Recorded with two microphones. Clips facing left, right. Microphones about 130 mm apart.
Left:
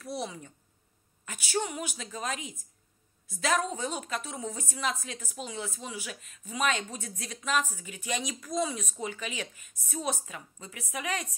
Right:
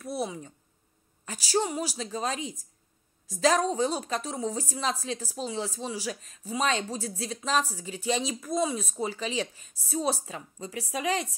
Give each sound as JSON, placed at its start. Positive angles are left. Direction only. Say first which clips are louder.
{"t": 0.2, "sound": "speech", "louder": "right 5 dB", "side_deg": -25}
{"t": 1.2, "sound": "speech", "louder": "right 4 dB", "side_deg": -35}